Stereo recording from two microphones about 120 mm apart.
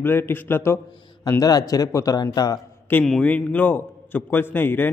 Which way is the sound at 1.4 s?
30° left (ahead or behind).